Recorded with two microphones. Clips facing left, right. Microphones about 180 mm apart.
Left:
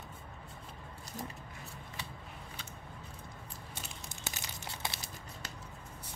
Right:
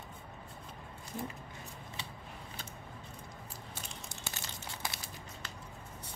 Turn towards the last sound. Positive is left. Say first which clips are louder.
# left 1 dB
turn(degrees=25)  # may be behind; listen again after turning